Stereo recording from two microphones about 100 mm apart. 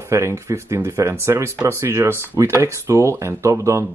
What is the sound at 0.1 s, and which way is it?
Speech, 30° right (ahead or behind).